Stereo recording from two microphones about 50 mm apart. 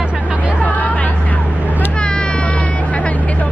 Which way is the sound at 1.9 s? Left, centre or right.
Centre.